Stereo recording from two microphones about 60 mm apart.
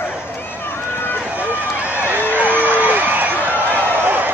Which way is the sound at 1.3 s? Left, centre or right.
Right.